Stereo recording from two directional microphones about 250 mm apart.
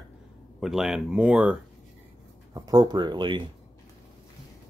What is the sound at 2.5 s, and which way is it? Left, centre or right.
Speech, centre.